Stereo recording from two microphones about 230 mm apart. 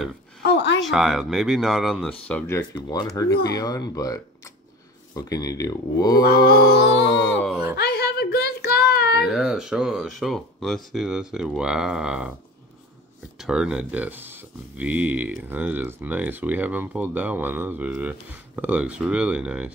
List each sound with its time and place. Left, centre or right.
0.5 s a sound: left
0.8 s speech: centre
6.2 s music: left
7.7 s a sound: left
9.2 s speech: centre
13.4 s speech: centre